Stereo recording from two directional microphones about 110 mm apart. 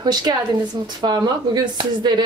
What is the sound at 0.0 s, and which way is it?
A woman's voice, 40° right (ahead or behind).